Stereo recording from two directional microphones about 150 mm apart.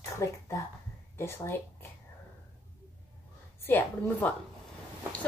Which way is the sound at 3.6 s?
10° left (ahead or behind).